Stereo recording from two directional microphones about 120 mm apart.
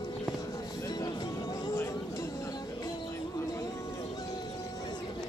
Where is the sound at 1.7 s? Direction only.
20° left (ahead or behind).